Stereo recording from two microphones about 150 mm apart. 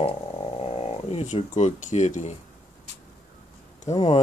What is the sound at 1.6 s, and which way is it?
Speech, 55° left (ahead or behind).